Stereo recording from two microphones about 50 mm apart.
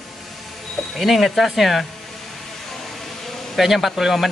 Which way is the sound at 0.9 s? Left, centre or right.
Centre.